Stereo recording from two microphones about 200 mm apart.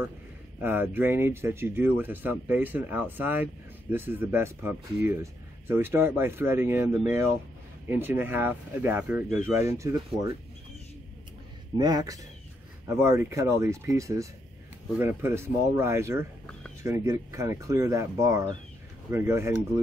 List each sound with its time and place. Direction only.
0.6 s speech: 10° right (ahead or behind)
11.7 s a man's voice: 20° right (ahead or behind)